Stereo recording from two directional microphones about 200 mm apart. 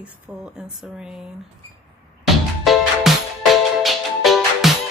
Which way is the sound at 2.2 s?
Centre (ahead or behind).